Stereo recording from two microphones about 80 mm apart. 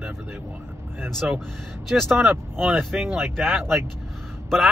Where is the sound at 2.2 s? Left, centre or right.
Right.